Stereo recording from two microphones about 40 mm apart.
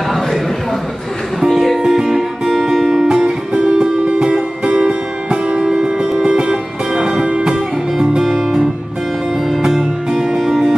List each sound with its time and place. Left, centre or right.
1.4 s music: centre
1.8 s music: centre
7.2 s music: right
7.5 s guitar: centre
9.5 s music: centre